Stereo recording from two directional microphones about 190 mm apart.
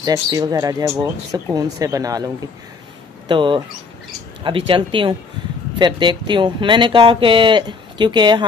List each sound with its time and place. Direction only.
0.0 s speech: 20° right (ahead or behind)